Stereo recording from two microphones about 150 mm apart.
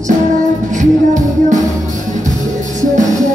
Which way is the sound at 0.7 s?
55° right (ahead or behind).